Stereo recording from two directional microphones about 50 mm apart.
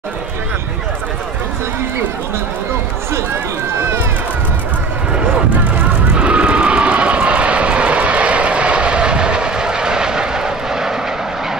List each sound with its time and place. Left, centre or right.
6.1 s vehicle: right